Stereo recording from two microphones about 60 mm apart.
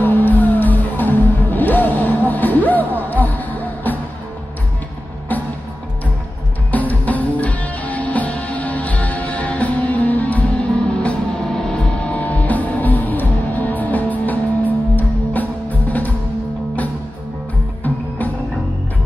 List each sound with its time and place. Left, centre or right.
0.0 s music: left
5.3 s music: left
6.7 s music: left